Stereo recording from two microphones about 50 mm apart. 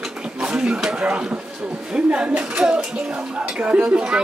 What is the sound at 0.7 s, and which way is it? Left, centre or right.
Speech, centre.